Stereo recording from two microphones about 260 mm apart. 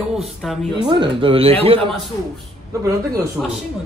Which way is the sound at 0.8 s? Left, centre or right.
Centre.